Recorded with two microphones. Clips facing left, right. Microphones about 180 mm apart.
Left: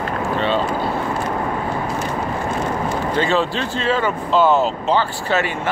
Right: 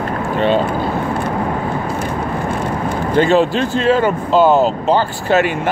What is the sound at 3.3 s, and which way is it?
Speech, 45° right (ahead or behind).